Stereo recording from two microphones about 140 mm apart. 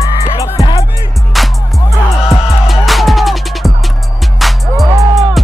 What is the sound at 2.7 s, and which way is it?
Music, centre (ahead or behind).